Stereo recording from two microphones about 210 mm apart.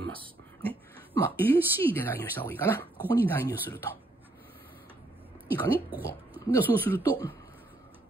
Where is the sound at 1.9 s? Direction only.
10° left (ahead or behind).